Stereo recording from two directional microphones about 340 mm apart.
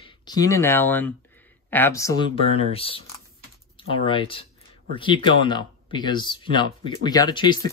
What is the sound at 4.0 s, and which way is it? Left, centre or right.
Speech, centre.